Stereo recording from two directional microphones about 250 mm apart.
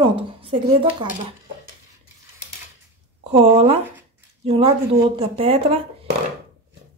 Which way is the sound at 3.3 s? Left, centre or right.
Right.